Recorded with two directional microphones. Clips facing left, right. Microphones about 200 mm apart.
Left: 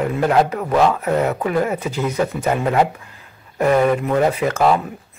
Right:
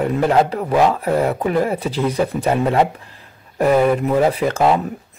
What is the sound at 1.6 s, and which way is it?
Speech, 35° right (ahead or behind).